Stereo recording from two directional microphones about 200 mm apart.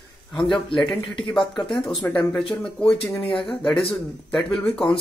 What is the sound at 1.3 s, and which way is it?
Speech, centre (ahead or behind).